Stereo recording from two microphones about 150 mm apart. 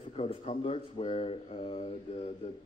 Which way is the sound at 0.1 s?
40° left (ahead or behind).